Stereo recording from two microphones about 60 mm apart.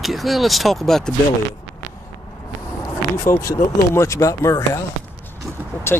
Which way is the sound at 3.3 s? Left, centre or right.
Left.